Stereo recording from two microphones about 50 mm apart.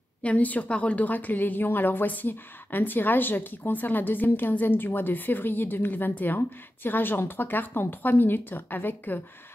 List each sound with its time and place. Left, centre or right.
0.2 s a woman's voice: left